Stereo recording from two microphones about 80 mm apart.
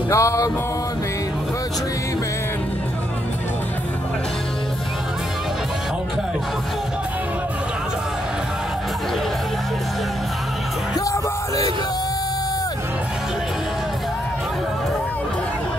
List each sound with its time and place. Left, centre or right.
0.1 s music: left
11.1 s music: left